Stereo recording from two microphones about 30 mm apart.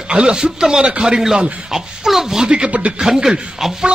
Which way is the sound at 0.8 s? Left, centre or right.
Right.